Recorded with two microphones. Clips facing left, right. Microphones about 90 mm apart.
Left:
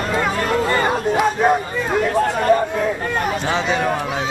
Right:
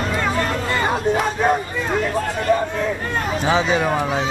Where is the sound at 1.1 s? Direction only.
5° left (ahead or behind).